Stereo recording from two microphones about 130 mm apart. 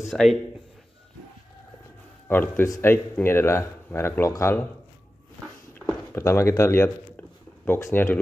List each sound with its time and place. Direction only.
0.0 s speech: centre (ahead or behind)
2.2 s speech: 15° left (ahead or behind)
6.1 s speech: 20° left (ahead or behind)